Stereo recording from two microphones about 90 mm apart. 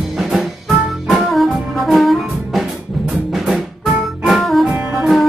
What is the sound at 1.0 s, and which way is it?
Music, centre (ahead or behind).